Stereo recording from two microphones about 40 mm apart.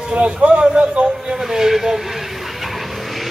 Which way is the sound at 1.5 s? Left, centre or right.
Centre.